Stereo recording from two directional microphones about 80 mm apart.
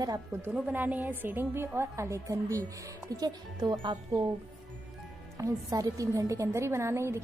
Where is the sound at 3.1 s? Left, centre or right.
Right.